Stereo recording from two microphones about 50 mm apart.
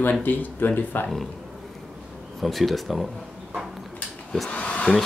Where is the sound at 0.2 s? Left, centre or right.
Left.